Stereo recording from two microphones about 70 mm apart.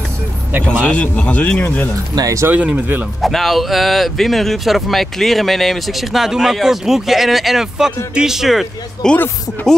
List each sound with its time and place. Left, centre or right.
0.8 s speech: centre
2.1 s speech: right
2.5 s speech: right
3.2 s speech: centre
9.0 s speech: centre